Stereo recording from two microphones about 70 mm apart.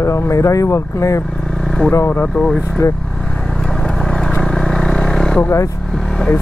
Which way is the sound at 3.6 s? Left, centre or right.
Centre.